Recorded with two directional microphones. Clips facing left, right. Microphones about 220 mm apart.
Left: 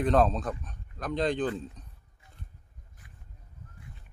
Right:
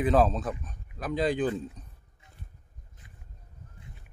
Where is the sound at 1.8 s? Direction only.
5° right (ahead or behind).